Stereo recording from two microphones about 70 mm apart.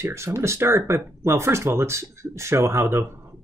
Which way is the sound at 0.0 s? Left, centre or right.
Right.